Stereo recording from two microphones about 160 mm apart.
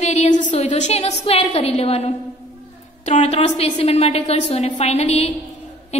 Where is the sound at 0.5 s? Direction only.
50° left (ahead or behind).